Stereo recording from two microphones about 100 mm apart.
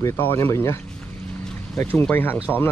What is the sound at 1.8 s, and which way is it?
Speech, 20° left (ahead or behind).